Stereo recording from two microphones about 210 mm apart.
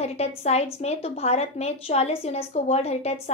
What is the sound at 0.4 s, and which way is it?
A woman's voice, 30° left (ahead or behind).